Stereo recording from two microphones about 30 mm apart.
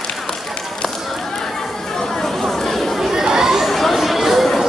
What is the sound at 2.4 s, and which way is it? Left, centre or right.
Chatter, centre.